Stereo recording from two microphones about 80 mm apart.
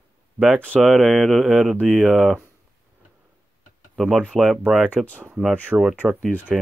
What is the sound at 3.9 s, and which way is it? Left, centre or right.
Speech, centre.